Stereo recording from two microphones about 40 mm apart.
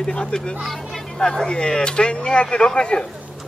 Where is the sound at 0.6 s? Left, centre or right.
Centre.